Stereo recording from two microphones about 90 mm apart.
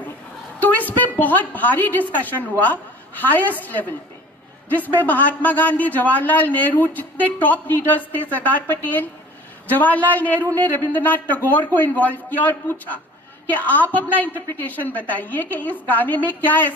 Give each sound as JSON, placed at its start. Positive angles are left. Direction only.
{"t": 0.6, "sound": "a woman's voice", "side_deg": 20}